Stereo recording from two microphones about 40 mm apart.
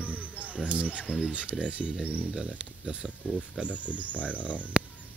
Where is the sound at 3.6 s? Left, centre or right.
Left.